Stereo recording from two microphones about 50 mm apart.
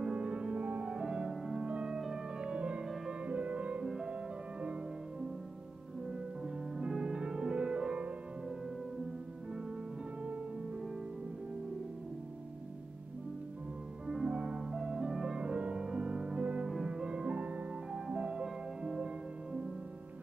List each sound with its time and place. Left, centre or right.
0.1 s music: right
0.8 s music: centre
3.8 s music: centre
6.0 s music: centre
14.1 s music: centre
14.7 s music: centre
15.3 s music: right
16.6 s music: centre
18.0 s music: centre